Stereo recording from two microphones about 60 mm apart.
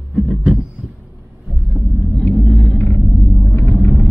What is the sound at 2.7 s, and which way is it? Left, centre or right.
Rumble, left.